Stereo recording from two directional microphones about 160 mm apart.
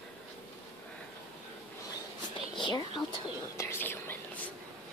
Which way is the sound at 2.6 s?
30° left (ahead or behind).